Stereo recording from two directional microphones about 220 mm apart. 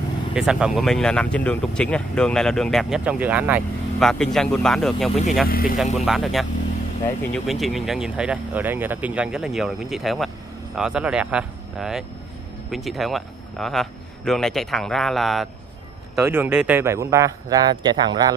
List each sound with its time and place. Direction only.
0.3 s speech: 5° right (ahead or behind)
5.5 s speech: 40° left (ahead or behind)
5.9 s speech: centre (ahead or behind); by 18.3 s 20° right (ahead or behind)